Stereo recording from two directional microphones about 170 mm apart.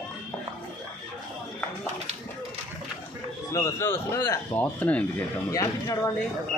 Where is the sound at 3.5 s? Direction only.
15° left (ahead or behind).